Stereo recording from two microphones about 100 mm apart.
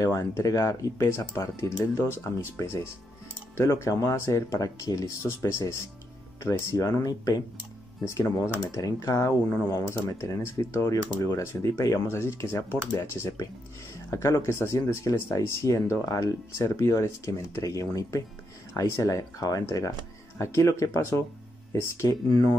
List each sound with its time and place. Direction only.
0.0 s speech: 35° left (ahead or behind)